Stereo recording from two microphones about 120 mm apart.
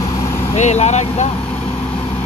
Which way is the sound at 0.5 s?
70° left (ahead or behind).